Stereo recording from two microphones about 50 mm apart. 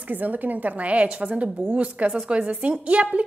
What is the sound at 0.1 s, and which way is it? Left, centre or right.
A woman's voice, right.